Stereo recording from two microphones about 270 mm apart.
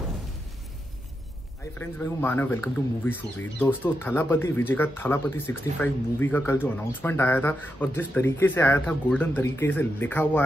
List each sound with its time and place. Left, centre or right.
1.8 s speech: centre